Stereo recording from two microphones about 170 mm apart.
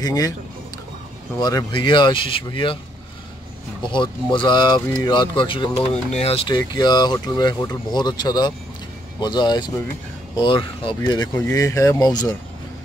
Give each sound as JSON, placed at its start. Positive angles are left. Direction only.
{"t": 0.0, "sound": "speech", "side_deg": 20}
{"t": 1.4, "sound": "speech", "side_deg": 20}
{"t": 3.9, "sound": "speech", "side_deg": 30}